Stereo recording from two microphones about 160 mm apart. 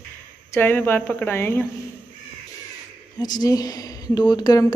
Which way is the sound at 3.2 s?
25° left (ahead or behind).